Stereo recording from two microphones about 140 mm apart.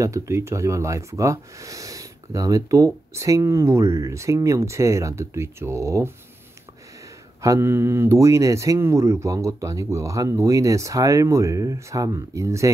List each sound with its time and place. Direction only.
0.0 s speech: 20° right (ahead or behind)
7.4 s speech: 20° right (ahead or behind)